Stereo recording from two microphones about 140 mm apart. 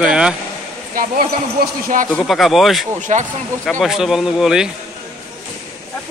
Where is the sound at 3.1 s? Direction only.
60° right (ahead or behind).